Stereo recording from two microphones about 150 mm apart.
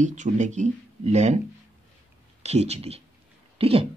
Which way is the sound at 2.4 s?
45° right (ahead or behind).